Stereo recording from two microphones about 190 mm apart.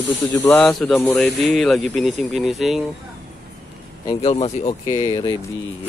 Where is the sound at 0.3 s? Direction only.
10° left (ahead or behind).